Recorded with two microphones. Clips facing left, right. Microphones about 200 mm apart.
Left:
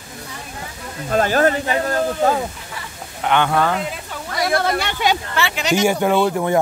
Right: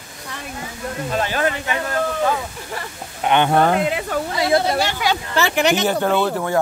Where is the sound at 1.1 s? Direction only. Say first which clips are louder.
Left 6 dB; 45° left (ahead or behind).